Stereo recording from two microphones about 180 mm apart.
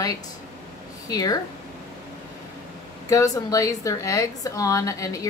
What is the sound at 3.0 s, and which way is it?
Speech, 20° left (ahead or behind).